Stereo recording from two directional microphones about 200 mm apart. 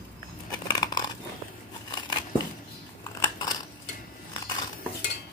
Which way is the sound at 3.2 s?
20° left (ahead or behind).